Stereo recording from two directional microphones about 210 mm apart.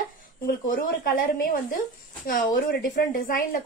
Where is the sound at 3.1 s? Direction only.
40° left (ahead or behind).